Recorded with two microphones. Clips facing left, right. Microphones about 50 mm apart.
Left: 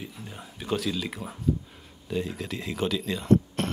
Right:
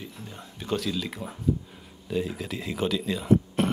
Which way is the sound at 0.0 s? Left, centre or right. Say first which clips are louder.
Left 1 dB; centre.